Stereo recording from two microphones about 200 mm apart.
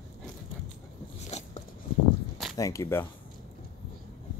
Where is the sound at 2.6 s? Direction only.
15° left (ahead or behind).